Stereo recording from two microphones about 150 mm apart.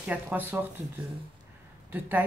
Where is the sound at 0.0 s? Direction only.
10° right (ahead or behind).